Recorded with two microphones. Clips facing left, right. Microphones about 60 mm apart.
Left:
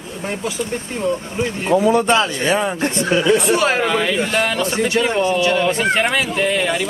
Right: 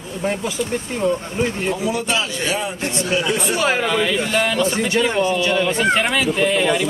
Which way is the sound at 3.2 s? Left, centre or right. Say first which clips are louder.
Left 6 dB; centre.